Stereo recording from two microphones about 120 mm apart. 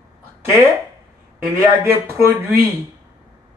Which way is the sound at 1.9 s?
20° right (ahead or behind).